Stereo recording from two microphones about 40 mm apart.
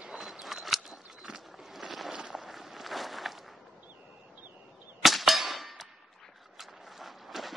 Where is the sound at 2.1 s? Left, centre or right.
Centre.